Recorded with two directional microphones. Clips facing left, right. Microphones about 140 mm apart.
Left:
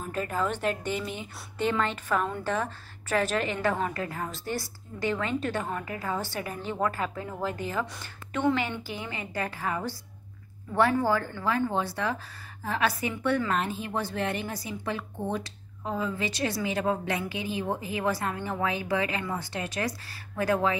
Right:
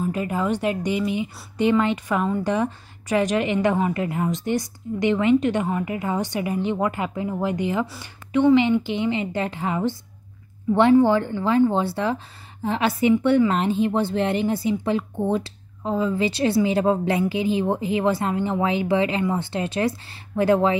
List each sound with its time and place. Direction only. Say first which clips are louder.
0.1 s a woman's voice: right 6 dB; 10° right (ahead or behind); by 20.7 s 25° right (ahead or behind)